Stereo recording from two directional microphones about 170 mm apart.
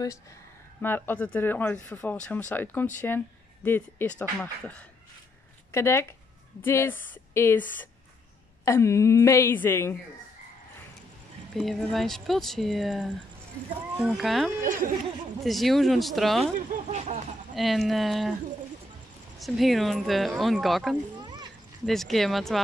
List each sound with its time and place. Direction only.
0.7 s speech: 10° left (ahead or behind)
11.5 s speech: centre (ahead or behind)
14.6 s speech: 55° right (ahead or behind)
15.4 s speech: centre (ahead or behind)
16.5 s speech: 45° right (ahead or behind)
17.6 s speech: centre (ahead or behind)
19.3 s speech: centre (ahead or behind)
21.2 s a sound: 25° right (ahead or behind)
21.8 s speech: centre (ahead or behind)